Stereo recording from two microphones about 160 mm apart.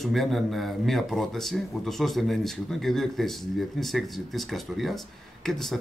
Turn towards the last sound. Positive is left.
turn(degrees=0)  # may be behind; listen again after turning